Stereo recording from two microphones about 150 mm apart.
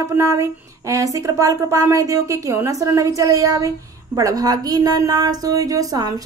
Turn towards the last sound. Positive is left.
turn(degrees=-25)  # may be behind; listen again after turning